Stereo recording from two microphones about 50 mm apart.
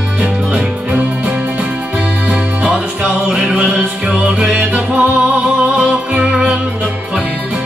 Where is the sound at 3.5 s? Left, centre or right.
Right.